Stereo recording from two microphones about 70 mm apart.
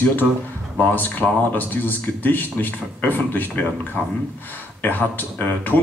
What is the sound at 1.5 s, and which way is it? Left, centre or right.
A man's voice, left.